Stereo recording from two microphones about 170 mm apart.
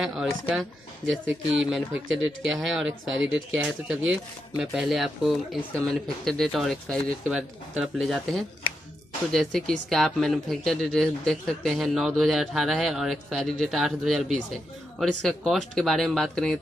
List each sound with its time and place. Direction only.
0.0 s speech: 5° right (ahead or behind)